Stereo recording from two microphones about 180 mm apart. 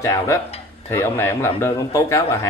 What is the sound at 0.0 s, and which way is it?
A man's voice, 15° left (ahead or behind).